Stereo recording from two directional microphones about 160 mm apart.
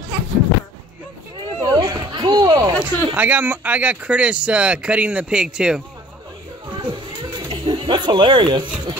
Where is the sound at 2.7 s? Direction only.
10° right (ahead or behind).